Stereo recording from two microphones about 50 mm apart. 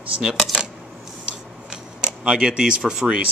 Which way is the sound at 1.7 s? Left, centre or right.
Centre.